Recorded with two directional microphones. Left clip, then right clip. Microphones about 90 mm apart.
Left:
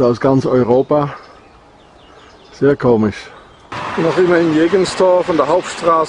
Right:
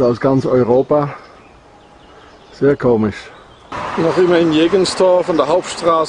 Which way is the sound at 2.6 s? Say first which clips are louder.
Even; 40° left (ahead or behind).